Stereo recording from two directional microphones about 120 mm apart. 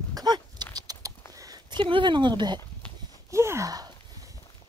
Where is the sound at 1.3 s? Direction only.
30° right (ahead or behind).